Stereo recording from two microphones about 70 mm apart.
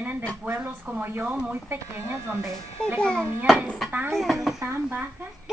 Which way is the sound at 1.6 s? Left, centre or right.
Right.